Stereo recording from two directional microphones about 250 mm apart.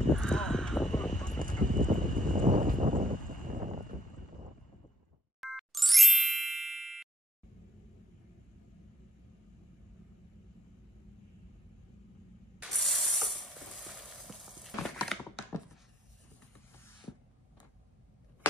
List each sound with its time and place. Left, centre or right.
0.1 s horse: centre
1.4 s clip-clop: right
5.4 s ding: centre
12.5 s ratchet: centre
15.5 s a sound: centre